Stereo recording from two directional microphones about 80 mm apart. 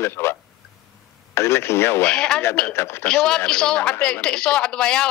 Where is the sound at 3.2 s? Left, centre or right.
Centre.